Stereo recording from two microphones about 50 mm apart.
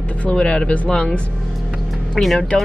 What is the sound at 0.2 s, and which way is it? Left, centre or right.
Speech, left.